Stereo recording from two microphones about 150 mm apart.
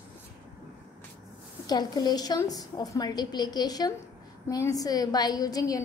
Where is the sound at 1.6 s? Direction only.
25° left (ahead or behind).